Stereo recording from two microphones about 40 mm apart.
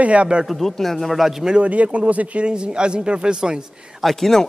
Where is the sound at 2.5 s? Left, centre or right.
Right.